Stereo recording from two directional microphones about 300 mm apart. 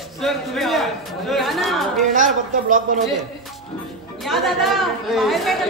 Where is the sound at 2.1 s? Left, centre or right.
Right.